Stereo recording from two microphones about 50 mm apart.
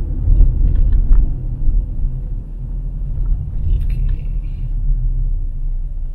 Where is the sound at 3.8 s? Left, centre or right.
Right.